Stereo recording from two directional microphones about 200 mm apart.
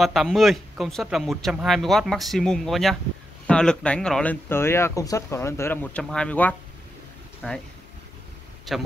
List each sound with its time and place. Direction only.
0.0 s speech: centre (ahead or behind)
8.7 s speech: centre (ahead or behind)